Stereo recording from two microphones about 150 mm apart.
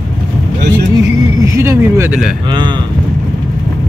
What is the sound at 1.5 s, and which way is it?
Speech, 15° right (ahead or behind).